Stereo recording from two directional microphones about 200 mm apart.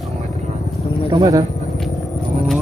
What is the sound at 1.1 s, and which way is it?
Speech, 20° right (ahead or behind).